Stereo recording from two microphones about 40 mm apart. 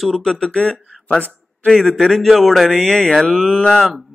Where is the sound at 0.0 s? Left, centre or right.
Centre.